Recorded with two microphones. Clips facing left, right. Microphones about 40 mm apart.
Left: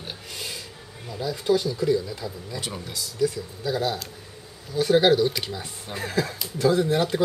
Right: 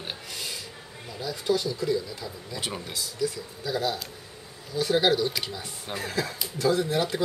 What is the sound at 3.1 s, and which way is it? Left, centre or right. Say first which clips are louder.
Speech: left 6 dB; centre.